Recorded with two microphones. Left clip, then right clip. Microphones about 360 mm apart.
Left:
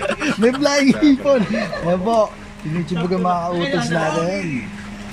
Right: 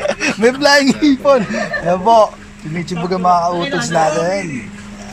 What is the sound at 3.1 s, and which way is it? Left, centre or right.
Speech, right.